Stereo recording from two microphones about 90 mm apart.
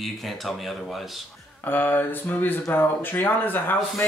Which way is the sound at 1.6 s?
20° left (ahead or behind).